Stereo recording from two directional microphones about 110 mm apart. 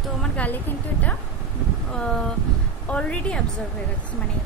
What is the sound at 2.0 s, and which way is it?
Speech, 5° left (ahead or behind).